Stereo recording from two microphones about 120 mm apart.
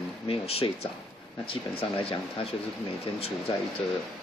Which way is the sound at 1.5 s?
50° left (ahead or behind).